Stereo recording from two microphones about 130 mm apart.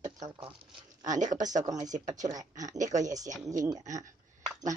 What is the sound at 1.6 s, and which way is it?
Speech, 30° right (ahead or behind).